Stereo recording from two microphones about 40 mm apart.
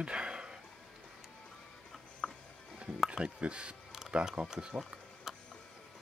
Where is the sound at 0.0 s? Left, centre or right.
Right.